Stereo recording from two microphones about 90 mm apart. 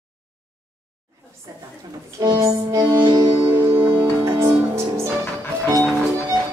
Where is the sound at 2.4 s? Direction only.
35° right (ahead or behind).